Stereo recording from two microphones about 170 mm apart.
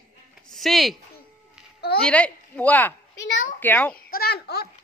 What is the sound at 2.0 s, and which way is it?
A woman's voice, 5° left (ahead or behind).